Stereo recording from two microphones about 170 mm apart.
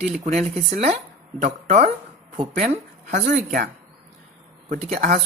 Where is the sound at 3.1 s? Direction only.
50° right (ahead or behind).